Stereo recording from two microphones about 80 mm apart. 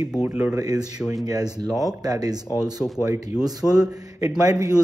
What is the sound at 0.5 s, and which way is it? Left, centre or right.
Speech, right.